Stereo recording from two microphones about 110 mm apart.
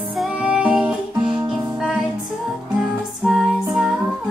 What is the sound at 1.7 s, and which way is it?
Music, centre (ahead or behind).